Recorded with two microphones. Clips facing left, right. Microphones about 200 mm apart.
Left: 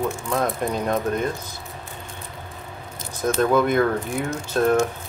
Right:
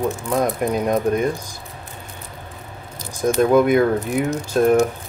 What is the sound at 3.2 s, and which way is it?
Speech, 10° right (ahead or behind).